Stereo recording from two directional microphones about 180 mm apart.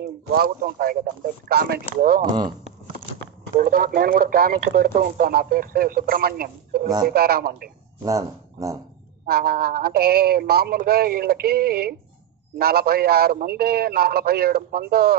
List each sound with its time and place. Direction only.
0.0 s a man's voice: 60° right (ahead or behind)
3.5 s speech: 55° right (ahead or behind)
8.0 s speech: 20° right (ahead or behind)
9.2 s speech: 60° right (ahead or behind)